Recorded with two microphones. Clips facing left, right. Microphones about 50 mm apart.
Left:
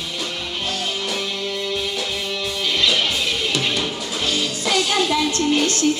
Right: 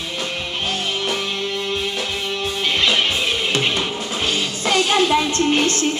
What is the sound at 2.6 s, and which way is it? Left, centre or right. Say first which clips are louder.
Music: right 1 dB; right.